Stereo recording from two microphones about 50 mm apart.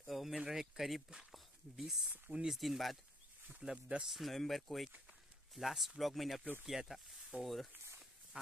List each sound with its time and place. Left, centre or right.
0.0 s a sound: centre
0.4 s speech: centre
3.6 s speech: centre
4.1 s speech: centre